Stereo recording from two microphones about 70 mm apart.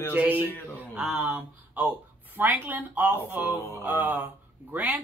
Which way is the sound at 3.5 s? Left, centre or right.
Left.